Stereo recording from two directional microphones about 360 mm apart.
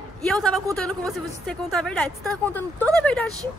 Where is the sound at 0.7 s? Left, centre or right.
Centre.